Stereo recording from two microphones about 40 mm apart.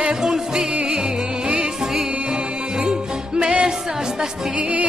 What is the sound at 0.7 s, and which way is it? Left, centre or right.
Music, right.